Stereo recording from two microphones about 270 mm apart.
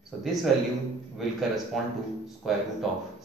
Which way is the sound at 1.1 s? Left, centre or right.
Centre.